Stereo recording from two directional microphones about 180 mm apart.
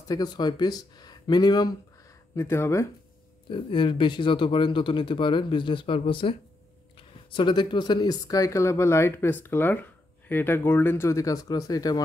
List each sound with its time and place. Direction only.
0.1 s speech: 20° left (ahead or behind)
3.4 s speech: 25° left (ahead or behind)